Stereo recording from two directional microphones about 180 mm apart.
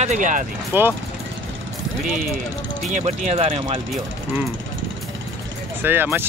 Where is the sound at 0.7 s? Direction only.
10° right (ahead or behind).